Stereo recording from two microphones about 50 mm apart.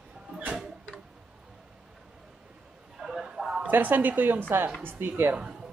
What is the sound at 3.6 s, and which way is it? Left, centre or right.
A woman's voice, right.